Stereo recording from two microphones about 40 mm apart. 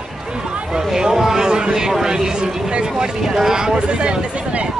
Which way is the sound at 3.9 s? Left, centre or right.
Right.